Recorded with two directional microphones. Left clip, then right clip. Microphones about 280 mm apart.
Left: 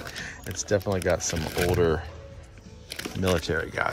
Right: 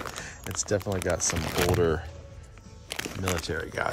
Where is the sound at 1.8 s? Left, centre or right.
Centre.